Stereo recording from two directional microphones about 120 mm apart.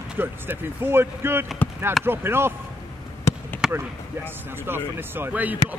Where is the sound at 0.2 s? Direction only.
15° right (ahead or behind).